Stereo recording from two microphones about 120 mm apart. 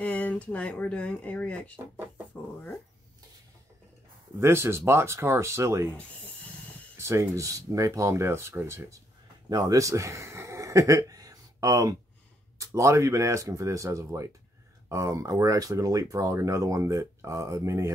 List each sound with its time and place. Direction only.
0.0 s speech: 10° left (ahead or behind)
4.4 s speech: 20° right (ahead or behind)
5.9 s a sound: 10° left (ahead or behind)
7.0 s speech: 25° right (ahead or behind)